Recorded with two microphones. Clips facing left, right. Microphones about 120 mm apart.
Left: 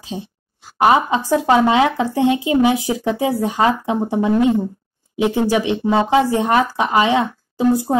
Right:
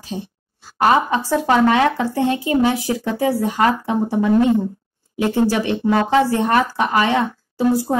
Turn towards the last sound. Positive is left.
turn(degrees=20)  # may be behind; listen again after turning